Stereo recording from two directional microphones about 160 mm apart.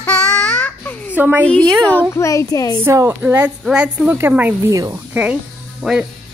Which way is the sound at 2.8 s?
15° right (ahead or behind).